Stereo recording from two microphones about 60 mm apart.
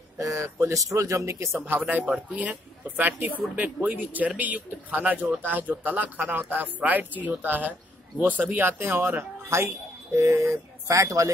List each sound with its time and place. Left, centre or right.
0.2 s speech: right
1.8 s speech: right